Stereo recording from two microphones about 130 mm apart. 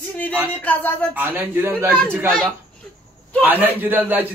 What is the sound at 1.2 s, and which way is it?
A man's voice, 15° right (ahead or behind).